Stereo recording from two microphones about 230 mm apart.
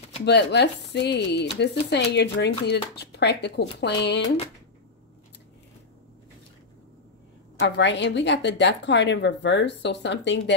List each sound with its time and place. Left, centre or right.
0.2 s speech: left
7.5 s speech: left